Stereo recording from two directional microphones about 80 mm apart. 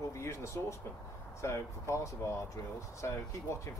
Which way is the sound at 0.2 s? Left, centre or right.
Left.